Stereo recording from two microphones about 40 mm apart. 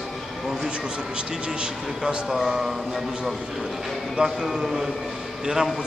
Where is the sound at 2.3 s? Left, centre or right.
Centre.